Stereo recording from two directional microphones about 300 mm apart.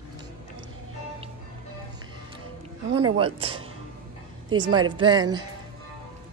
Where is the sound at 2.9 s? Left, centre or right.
Right.